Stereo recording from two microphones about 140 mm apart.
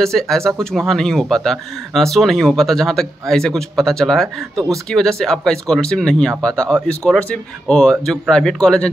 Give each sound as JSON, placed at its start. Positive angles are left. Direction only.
{"t": 0.0, "sound": "speech", "side_deg": 5}